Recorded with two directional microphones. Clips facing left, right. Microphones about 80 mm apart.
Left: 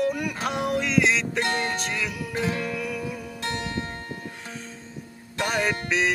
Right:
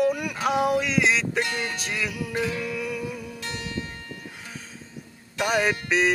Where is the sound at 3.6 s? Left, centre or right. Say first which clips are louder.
Left 2 dB; left.